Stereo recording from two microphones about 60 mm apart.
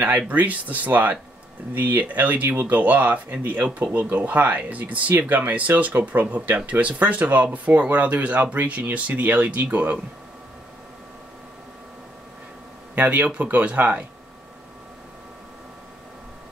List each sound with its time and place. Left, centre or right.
0.3 s speech: right
12.9 s speech: right